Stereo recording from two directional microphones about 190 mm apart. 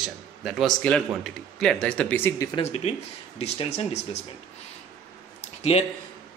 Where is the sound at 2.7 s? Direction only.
35° left (ahead or behind).